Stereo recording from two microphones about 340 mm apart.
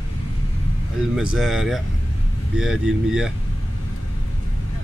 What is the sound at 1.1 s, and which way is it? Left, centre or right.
Speech, centre.